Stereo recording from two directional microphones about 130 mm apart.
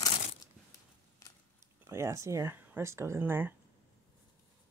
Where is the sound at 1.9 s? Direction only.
25° right (ahead or behind).